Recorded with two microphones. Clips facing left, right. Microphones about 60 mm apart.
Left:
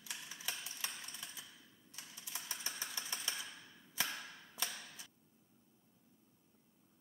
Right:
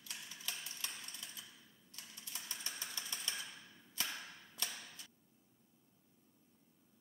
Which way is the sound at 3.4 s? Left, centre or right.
Centre.